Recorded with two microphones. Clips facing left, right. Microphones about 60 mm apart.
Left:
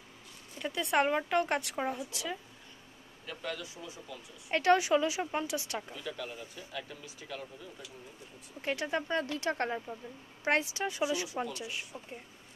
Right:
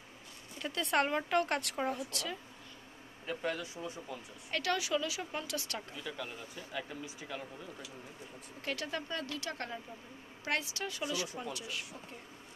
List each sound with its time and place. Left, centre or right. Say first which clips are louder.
0.6 s speech: left 2 dB; centre
3.3 s speech: right 3 dB; right
4.5 s speech: left 8 dB; left
5.9 s speech: left 2 dB; centre
8.6 s speech: left 5 dB; left